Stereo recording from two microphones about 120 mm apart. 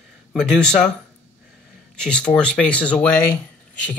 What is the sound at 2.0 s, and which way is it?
Speech, 10° left (ahead or behind).